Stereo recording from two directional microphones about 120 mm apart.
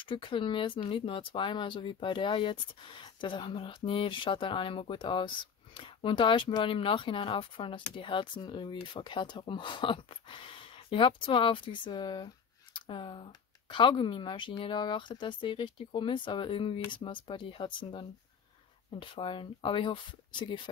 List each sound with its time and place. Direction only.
0.0 s speech: 45° left (ahead or behind)